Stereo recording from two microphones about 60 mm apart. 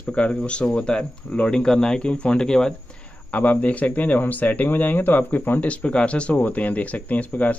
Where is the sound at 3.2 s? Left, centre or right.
Left.